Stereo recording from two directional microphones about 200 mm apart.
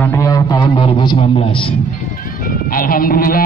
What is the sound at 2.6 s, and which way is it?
Speech, 45° left (ahead or behind).